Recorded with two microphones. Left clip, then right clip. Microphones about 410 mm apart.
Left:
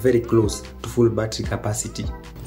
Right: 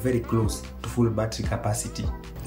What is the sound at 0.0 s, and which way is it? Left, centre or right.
Speech, centre.